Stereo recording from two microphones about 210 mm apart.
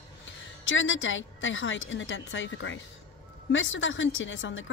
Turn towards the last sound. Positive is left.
turn(degrees=60)  # may be behind; listen again after turning